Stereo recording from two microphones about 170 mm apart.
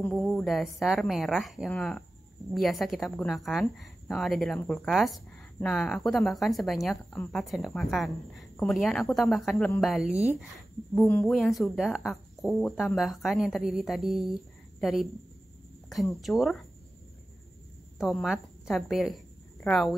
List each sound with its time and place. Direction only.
0.1 s a woman's voice: centre (ahead or behind)
16.2 s speech: centre (ahead or behind)
17.9 s a woman's voice: centre (ahead or behind)